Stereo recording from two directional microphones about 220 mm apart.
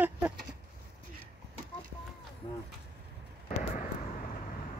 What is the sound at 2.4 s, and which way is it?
Speech, 20° left (ahead or behind).